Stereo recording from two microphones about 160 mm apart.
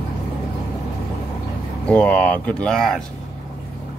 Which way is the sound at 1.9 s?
10° left (ahead or behind).